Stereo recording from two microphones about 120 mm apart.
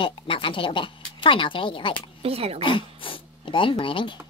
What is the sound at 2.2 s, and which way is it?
Speech, 55° right (ahead or behind).